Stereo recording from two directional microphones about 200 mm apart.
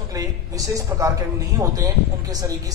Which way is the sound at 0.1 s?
15° right (ahead or behind).